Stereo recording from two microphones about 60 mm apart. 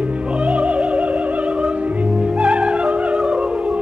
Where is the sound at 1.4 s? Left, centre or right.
Centre.